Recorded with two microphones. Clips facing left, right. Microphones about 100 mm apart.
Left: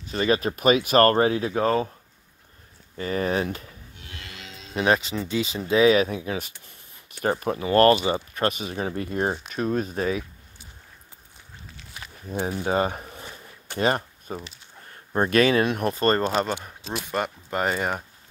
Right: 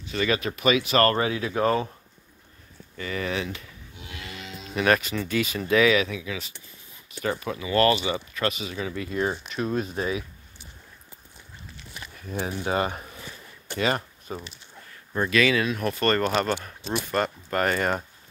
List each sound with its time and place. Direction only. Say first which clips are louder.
0.0 s speech: left 3 dB; 35° left (ahead or behind)
3.0 s speech: left 4 dB; 40° left (ahead or behind)
4.0 s livestock: right 4 dB; 5° right (ahead or behind)
4.7 s speech: even; 25° left (ahead or behind); by 10.2 s 40° left (ahead or behind)
12.3 s a sound: left 2 dB; 35° left (ahead or behind)
14.9 s speech: left 3 dB; 40° left (ahead or behind)
15.8 s speech: left 2 dB; 30° left (ahead or behind)
17.0 s speech: even; 15° left (ahead or behind)